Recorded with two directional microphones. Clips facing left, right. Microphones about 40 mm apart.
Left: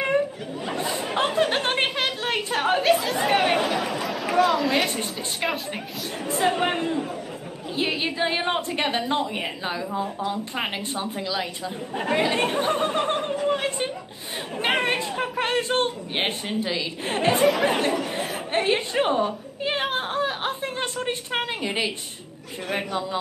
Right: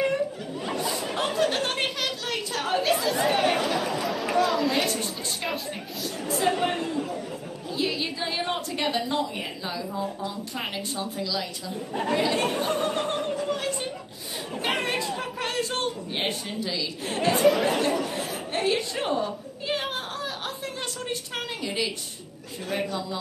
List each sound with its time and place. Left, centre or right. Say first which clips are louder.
0.7 s a sound: left 4 dB; left
2.8 s speech: left 3 dB; centre
5.4 s a woman's voice: left 6 dB; left